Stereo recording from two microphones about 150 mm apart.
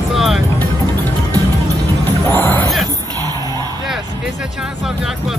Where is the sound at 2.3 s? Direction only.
15° left (ahead or behind).